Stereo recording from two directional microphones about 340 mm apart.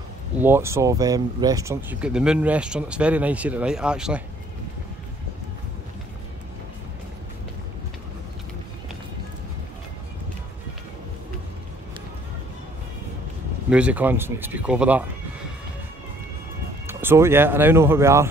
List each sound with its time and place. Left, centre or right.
0.4 s speech: centre
13.7 s speech: centre
16.8 s speech: centre